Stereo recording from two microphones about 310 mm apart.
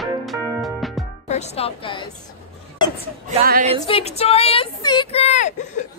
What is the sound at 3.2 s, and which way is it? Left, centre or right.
Speech, right.